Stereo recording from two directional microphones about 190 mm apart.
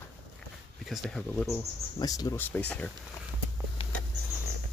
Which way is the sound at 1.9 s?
20° left (ahead or behind).